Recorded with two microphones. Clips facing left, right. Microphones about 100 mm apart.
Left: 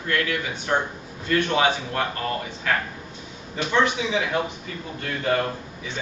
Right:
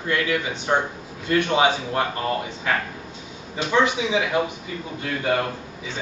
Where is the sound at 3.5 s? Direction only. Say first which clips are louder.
Right 1 dB; 15° right (ahead or behind).